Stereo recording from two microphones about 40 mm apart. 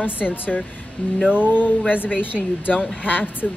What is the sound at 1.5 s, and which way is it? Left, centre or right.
A woman's voice, left.